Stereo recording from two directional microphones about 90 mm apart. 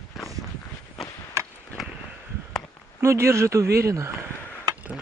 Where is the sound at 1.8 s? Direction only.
Centre (ahead or behind).